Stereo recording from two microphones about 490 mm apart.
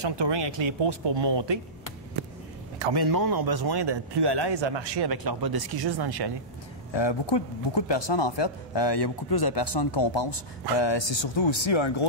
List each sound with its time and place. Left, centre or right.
0.0 s speech: right
2.8 s a man's voice: right
6.9 s speech: left